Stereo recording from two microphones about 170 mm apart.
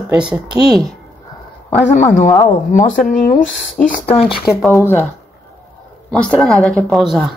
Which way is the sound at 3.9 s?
45° left (ahead or behind).